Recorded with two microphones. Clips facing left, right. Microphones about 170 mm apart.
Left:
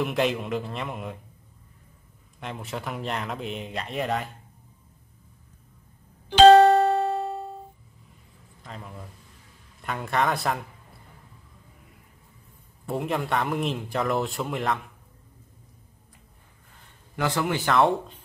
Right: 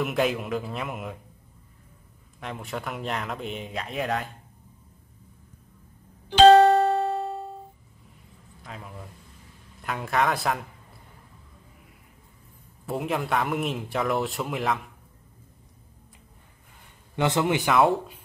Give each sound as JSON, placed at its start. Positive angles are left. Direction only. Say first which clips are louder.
{"t": 0.0, "sound": "speech", "louder": "even", "side_deg": 0}
{"t": 2.4, "sound": "speech", "louder": "even", "side_deg": 0}
{"t": 6.3, "sound": "music", "louder": "left 1 dB", "side_deg": 90}
{"t": 8.6, "sound": "speech", "louder": "even", "side_deg": 0}
{"t": 12.8, "sound": "speech", "louder": "even", "side_deg": 0}
{"t": 17.1, "sound": "a man's voice", "louder": "right 3 dB", "side_deg": -20}
{"t": 17.7, "sound": "speech", "louder": "left 1 dB", "side_deg": -5}